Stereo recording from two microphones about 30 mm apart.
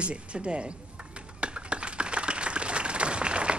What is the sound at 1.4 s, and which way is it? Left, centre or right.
Applause, right.